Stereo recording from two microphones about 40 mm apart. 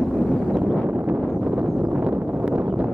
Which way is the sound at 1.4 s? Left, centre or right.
Right.